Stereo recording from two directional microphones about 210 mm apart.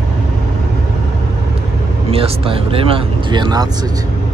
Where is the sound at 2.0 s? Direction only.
25° right (ahead or behind).